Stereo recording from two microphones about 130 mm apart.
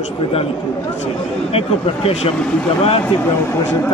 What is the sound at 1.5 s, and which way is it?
Speech, 50° left (ahead or behind).